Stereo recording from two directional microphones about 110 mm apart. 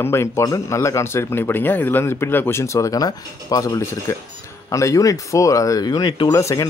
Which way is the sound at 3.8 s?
25° left (ahead or behind).